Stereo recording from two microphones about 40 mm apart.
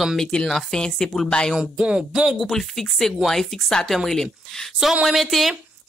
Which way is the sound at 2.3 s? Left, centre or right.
Centre.